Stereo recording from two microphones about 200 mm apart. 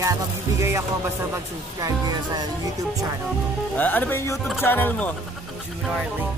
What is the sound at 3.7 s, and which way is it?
Speech, 10° left (ahead or behind).